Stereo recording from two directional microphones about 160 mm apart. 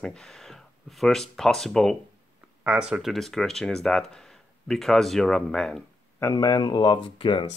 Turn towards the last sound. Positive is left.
turn(degrees=35)  # may be behind; listen again after turning